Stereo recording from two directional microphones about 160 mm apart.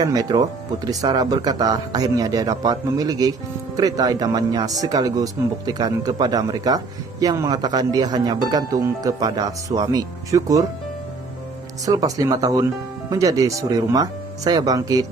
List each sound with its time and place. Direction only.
0.0 s speech: 25° right (ahead or behind)
11.8 s speech: 20° right (ahead or behind)